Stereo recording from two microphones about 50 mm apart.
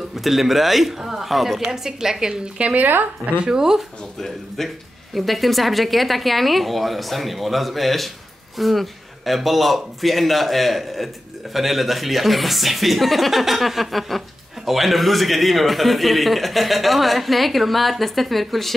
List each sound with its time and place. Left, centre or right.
0.1 s a man's voice: centre
2.6 s speech: right
3.3 s speech: centre
4.6 s a man's voice: centre